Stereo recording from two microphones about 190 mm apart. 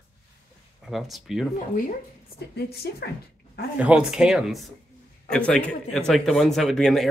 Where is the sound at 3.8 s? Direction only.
5° right (ahead or behind).